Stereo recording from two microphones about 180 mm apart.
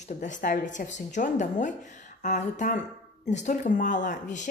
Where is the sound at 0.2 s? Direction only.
45° left (ahead or behind).